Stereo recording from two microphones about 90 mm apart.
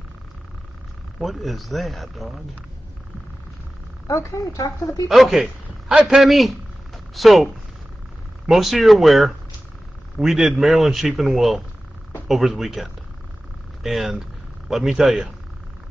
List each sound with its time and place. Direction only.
1.2 s speech: centre (ahead or behind)
4.1 s speech: 40° left (ahead or behind)
5.0 s a man's voice: 5° right (ahead or behind)
8.5 s speech: centre (ahead or behind)